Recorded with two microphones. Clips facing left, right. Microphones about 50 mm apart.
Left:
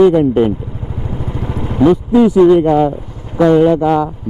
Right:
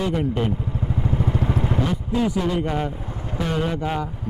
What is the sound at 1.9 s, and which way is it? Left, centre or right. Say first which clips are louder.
Speech: left 12 dB; left.